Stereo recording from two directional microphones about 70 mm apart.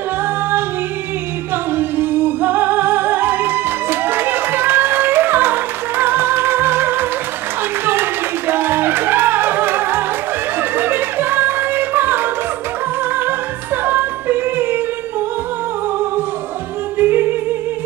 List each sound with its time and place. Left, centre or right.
1.8 s music: right
13.8 s music: right
17.0 s music: right